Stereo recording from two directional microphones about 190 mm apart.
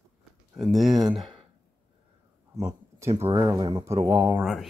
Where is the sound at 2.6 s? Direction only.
15° right (ahead or behind).